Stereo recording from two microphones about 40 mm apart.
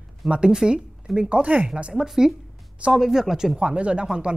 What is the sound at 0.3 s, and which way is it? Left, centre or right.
Speech, right.